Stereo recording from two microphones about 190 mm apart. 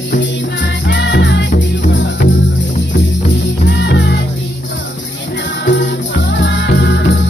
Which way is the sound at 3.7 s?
65° left (ahead or behind).